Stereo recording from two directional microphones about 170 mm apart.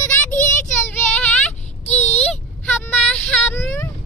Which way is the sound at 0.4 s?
50° left (ahead or behind).